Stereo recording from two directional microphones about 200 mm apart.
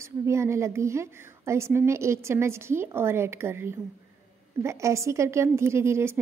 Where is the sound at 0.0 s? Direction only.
15° right (ahead or behind).